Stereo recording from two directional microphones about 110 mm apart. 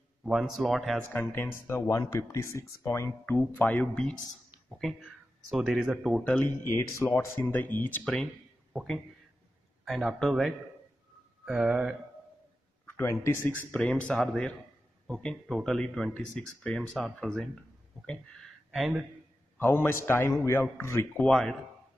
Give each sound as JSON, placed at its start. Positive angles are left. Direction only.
{"t": 0.2, "sound": "speech", "side_deg": -5}
{"t": 1.1, "sound": "speech", "side_deg": 20}
{"t": 3.3, "sound": "speech", "side_deg": 15}
{"t": 4.6, "sound": "a sound", "side_deg": 0}
{"t": 5.5, "sound": "speech", "side_deg": 0}
{"t": 6.2, "sound": "speech", "side_deg": 20}
{"t": 8.0, "sound": "speech", "side_deg": 5}
{"t": 12.8, "sound": "speech", "side_deg": 25}
{"t": 13.7, "sound": "speech", "side_deg": 10}
{"t": 18.7, "sound": "a man's voice", "side_deg": -5}
{"t": 19.6, "sound": "speech", "side_deg": 20}
{"t": 21.2, "sound": "speech", "side_deg": 5}